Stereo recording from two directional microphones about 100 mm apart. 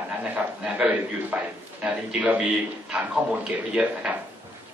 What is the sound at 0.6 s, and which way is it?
Speech, 10° right (ahead or behind).